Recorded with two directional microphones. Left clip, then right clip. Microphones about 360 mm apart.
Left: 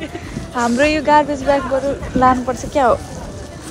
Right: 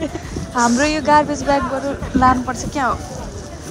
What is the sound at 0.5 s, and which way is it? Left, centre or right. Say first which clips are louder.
Speech: left 1 dB; centre.